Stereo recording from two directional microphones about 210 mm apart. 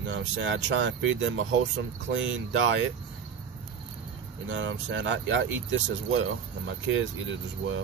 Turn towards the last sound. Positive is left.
turn(degrees=-65)  # may be behind; listen again after turning